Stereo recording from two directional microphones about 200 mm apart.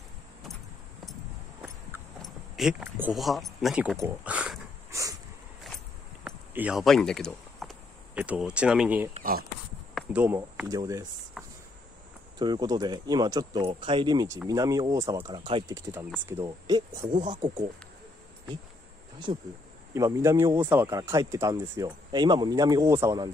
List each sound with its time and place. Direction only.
2.5 s speech: centre (ahead or behind)
6.2 s a sound: 10° right (ahead or behind)
8.1 s speech: 5° right (ahead or behind)
10.1 s speech: 10° right (ahead or behind)
12.4 s speech: 20° right (ahead or behind)
19.3 s speech: 30° right (ahead or behind)
19.9 s speech: 15° right (ahead or behind)